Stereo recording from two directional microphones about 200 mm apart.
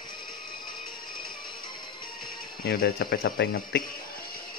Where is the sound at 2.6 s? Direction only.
50° left (ahead or behind).